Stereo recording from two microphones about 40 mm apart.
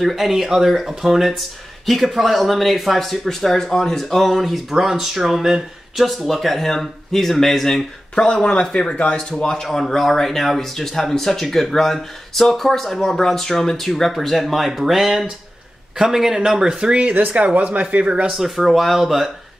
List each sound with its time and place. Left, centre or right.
0.0 s speech: centre
8.3 s speech: left
9.4 s speech: centre
16.9 s speech: right
18.3 s speech: centre